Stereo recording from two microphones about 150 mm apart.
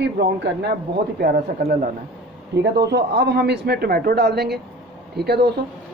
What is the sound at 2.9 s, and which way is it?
Speech, 90° right.